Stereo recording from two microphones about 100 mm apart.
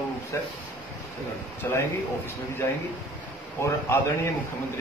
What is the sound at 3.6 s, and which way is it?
Speech, 30° left (ahead or behind).